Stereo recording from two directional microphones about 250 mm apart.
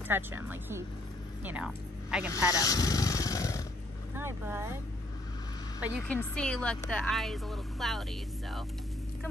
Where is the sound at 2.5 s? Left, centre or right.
Centre.